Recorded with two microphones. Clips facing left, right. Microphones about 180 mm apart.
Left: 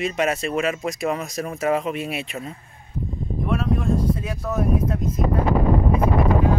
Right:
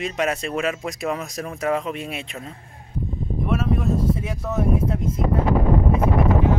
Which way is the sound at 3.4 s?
5° right (ahead or behind).